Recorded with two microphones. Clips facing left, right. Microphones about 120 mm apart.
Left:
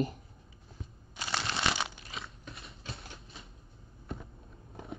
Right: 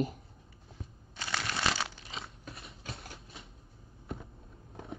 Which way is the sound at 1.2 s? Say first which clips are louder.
Left 1 dB; 25° left (ahead or behind).